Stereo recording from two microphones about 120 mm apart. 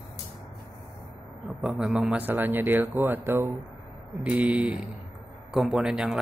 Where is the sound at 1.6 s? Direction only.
5° right (ahead or behind).